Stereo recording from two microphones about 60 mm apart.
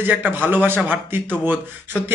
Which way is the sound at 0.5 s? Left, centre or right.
Right.